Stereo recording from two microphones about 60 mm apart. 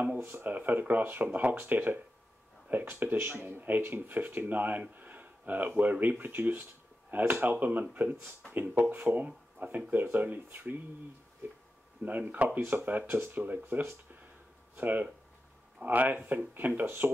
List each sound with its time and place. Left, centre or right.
0.2 s speech: right
3.3 s speech: right
12.0 s speech: right
12.5 s speech: right